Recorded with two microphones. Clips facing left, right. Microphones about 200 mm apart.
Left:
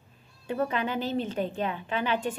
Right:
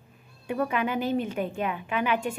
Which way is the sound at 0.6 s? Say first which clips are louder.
Right 1 dB; 30° left (ahead or behind).